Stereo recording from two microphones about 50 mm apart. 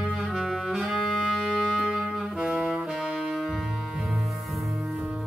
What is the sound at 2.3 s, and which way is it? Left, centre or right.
Saxophone, centre.